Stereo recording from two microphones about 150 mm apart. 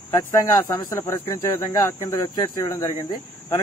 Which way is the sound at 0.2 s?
25° left (ahead or behind).